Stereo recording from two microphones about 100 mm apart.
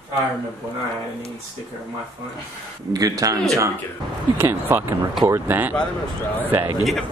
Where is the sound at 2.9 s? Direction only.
40° right (ahead or behind).